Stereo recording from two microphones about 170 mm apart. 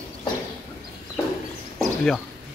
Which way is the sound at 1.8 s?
5° left (ahead or behind).